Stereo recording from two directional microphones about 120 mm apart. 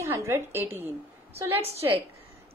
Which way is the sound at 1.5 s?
55° right (ahead or behind).